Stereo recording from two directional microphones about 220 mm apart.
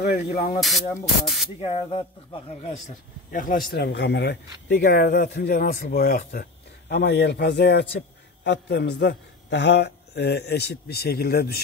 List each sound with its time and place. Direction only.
0.0 s speech: 45° left (ahead or behind)
0.6 s speech: centre (ahead or behind)
1.6 s speech: 25° left (ahead or behind)
3.3 s a man's voice: 40° left (ahead or behind)